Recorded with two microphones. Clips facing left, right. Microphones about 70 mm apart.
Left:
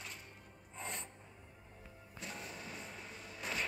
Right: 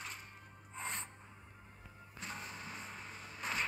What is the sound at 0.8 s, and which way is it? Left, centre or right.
Music, right.